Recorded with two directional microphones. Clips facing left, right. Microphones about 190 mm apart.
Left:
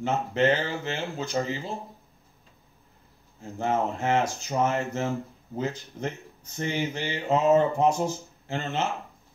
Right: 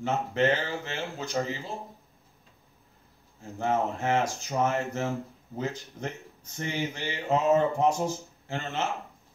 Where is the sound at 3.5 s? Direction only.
25° left (ahead or behind).